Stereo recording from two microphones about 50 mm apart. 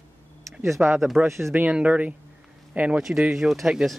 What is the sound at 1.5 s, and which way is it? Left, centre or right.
Speech, right.